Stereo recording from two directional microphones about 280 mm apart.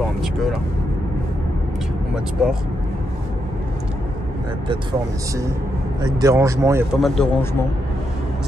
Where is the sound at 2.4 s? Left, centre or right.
Centre.